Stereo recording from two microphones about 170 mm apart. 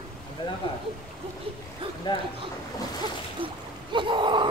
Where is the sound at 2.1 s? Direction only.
25° left (ahead or behind).